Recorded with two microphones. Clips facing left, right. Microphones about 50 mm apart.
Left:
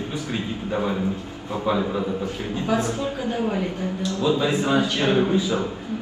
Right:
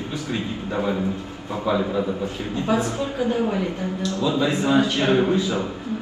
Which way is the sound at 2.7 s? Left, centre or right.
Right.